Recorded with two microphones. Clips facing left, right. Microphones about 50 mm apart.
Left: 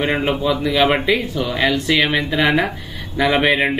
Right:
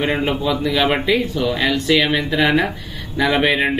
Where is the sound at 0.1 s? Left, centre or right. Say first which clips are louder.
Left 1 dB; centre.